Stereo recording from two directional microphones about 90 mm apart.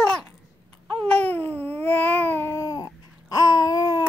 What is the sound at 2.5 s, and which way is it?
Babbling, 45° left (ahead or behind).